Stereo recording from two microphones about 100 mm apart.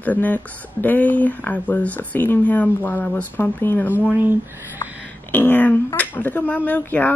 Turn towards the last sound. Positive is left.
turn(degrees=20)  # may be behind; listen again after turning